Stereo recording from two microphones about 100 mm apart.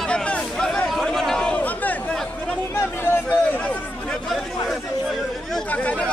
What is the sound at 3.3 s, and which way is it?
Chatter, 15° left (ahead or behind).